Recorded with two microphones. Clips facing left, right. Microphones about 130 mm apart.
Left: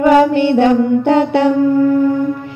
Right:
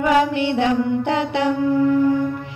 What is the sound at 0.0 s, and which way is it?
Child singing, 45° left (ahead or behind).